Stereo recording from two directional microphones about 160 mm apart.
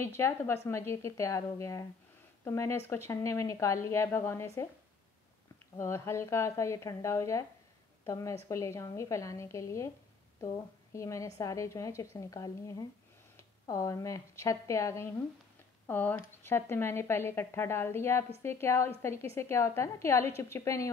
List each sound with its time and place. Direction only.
0.0 s a woman's voice: 15° left (ahead or behind)
5.8 s a woman's voice: 15° left (ahead or behind)